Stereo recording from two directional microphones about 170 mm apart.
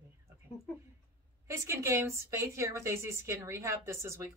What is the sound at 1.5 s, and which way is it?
A woman's voice, 15° right (ahead or behind).